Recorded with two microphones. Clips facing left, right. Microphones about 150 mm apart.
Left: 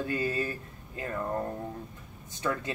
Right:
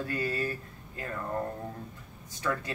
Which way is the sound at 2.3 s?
20° left (ahead or behind).